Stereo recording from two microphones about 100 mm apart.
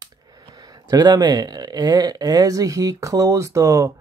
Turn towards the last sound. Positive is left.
turn(degrees=-30)  # may be behind; listen again after turning